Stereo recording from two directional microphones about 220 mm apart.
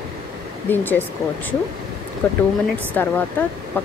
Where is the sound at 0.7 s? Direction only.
10° left (ahead or behind).